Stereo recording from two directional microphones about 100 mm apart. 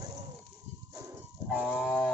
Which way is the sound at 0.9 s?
35° right (ahead or behind).